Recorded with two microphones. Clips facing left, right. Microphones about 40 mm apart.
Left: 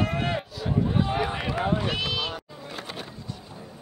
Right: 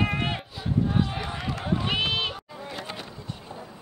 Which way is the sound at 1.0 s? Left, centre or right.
Centre.